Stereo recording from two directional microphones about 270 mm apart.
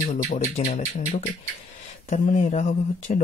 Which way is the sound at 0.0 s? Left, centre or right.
Left.